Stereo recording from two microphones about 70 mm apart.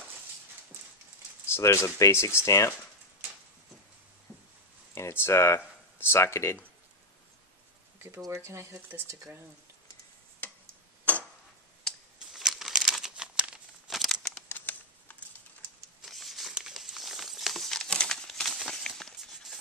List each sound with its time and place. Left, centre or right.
1.5 s speech: left
4.9 s speech: left
8.4 s speech: right
11.1 s tick-tock: left
12.2 s crumpling: centre
13.2 s crumpling: centre
13.8 s crumpling: centre
14.5 s shuffling cards: left
16.0 s a sound: centre
16.5 s crumpling: centre